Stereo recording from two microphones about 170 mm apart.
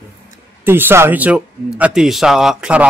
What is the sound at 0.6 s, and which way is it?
Speech, 10° right (ahead or behind).